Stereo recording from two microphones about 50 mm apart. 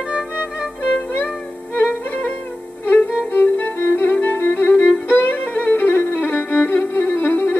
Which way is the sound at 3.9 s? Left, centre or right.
Left.